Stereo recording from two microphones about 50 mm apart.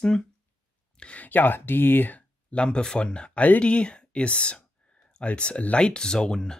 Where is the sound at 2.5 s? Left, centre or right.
Left.